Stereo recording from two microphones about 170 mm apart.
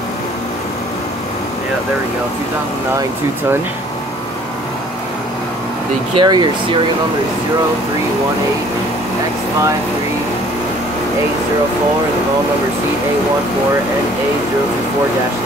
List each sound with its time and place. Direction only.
6.1 s speech: 25° right (ahead or behind)